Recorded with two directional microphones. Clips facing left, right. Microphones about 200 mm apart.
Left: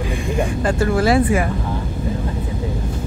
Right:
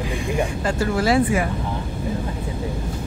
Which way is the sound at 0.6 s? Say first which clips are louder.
Left 4 dB; 55° left (ahead or behind).